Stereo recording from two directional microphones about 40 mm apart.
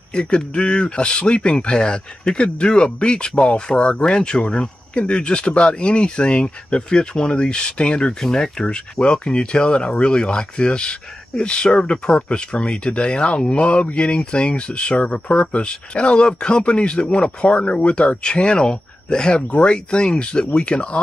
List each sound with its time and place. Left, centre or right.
0.1 s speech: left